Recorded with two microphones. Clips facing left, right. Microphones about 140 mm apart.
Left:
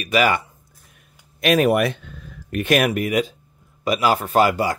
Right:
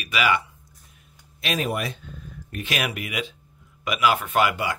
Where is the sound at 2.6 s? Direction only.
50° left (ahead or behind).